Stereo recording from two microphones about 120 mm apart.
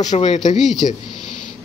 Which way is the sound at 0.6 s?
Centre (ahead or behind).